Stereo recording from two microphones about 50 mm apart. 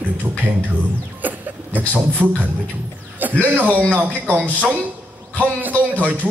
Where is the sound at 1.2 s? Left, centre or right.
Right.